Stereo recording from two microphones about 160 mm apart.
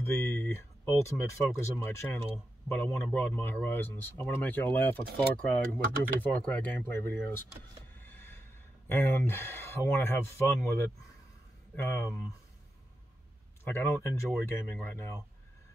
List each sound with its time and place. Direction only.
0.0 s a sound: 15° left (ahead or behind)
1.9 s speech: 15° left (ahead or behind)
8.0 s train: 15° left (ahead or behind)
8.8 s speech: 15° left (ahead or behind)
13.7 s speech: 15° left (ahead or behind)